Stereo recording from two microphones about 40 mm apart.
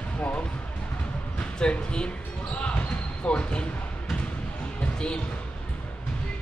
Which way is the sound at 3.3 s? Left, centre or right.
Left.